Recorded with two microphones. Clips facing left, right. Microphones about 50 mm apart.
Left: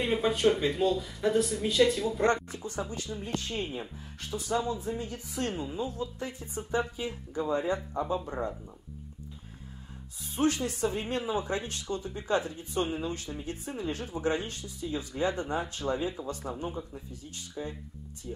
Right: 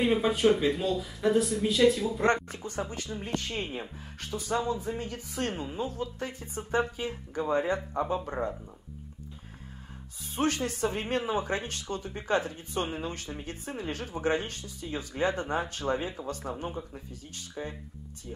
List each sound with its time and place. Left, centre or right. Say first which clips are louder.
0.0 s speech: right 2 dB; centre
2.2 s speech: right 1 dB; right
5.9 s speech: right 1 dB; right
10.3 s speech: left 1 dB; right